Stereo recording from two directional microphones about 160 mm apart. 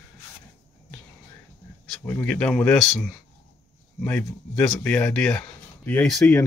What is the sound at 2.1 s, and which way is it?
Speech, 10° left (ahead or behind).